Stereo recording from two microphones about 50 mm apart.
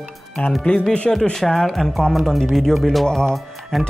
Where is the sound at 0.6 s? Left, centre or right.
Centre.